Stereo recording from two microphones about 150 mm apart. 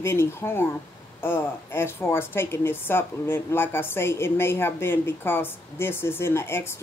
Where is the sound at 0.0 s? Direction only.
15° left (ahead or behind).